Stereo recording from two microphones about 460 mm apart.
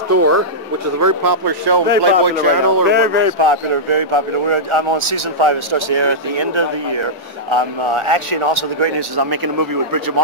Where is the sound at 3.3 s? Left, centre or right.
Right.